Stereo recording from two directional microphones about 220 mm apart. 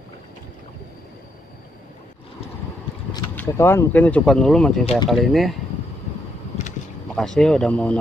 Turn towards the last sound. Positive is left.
turn(degrees=5)  # may be behind; listen again after turning